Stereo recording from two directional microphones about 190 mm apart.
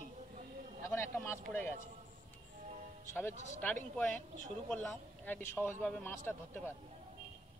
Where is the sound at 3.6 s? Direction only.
10° left (ahead or behind).